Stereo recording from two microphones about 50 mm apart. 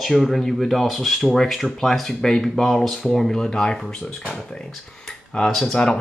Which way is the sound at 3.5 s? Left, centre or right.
Centre.